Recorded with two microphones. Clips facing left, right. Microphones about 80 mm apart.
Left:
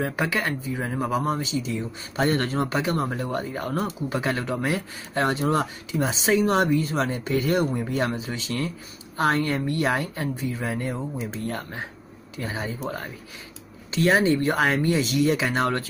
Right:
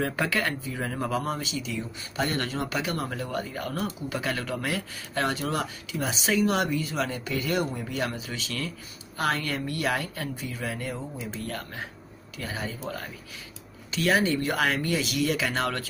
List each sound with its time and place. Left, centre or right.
0.0 s speech: centre
1.3 s speech: left
13.9 s speech: left